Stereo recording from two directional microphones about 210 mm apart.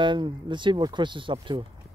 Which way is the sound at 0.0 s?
20° right (ahead or behind).